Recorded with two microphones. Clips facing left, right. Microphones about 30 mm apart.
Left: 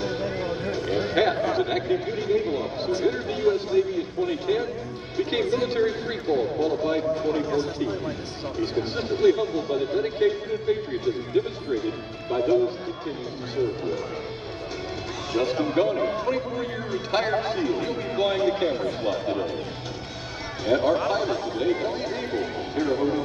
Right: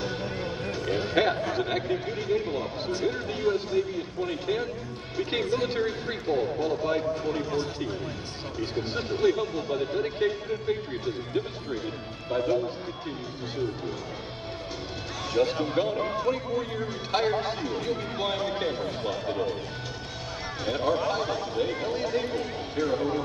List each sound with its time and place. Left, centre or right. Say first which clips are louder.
0.0 s music: left 4 dB; centre
0.8 s speech: left 2 dB; centre
7.5 s a man's voice: left 4 dB; centre
15.3 s a man's voice: left 2 dB; centre
20.6 s speech: left 5 dB; centre